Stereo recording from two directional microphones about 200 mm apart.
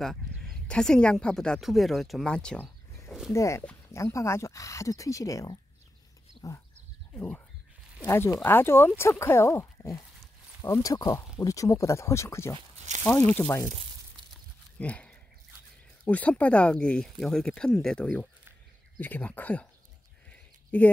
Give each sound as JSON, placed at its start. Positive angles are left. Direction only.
{"t": 0.7, "sound": "speech", "side_deg": 5}
{"t": 3.3, "sound": "speech", "side_deg": 15}
{"t": 14.8, "sound": "speech", "side_deg": 5}
{"t": 20.2, "sound": "a sound", "side_deg": 10}